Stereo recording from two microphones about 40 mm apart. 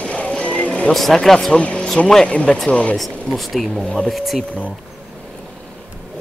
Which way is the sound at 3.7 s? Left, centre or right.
Centre.